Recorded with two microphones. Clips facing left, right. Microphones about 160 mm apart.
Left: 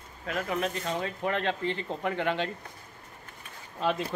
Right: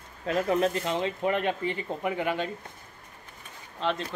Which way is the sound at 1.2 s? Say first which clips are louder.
Right 1 dB; 15° right (ahead or behind).